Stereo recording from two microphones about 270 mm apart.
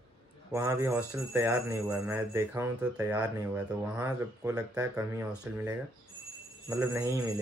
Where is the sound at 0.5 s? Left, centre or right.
Centre.